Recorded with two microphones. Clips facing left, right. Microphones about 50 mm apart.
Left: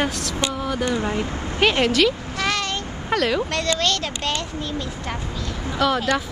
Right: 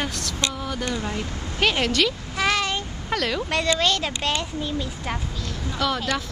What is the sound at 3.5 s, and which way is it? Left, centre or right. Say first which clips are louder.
A child's voice: even; centre.